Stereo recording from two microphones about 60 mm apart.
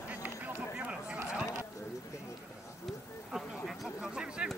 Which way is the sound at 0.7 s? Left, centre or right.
Right.